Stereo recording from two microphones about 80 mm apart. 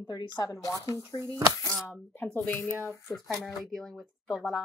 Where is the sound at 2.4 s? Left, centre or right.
Left.